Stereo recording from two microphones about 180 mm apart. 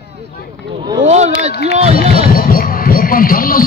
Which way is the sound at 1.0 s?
40° right (ahead or behind).